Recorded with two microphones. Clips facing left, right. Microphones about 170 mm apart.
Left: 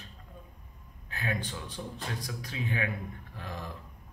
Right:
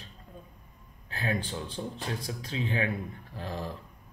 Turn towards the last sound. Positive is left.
turn(degrees=-30)  # may be behind; listen again after turning